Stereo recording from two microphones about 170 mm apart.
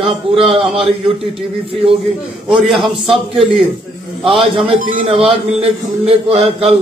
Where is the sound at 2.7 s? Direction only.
Centre (ahead or behind).